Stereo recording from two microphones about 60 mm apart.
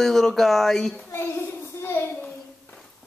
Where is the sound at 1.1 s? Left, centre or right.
Left.